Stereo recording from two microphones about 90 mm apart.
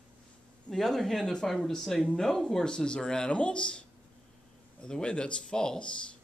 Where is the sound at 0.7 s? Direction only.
5° left (ahead or behind).